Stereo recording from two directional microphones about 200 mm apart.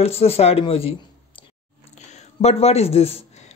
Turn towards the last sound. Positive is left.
turn(degrees=30)  # may be behind; listen again after turning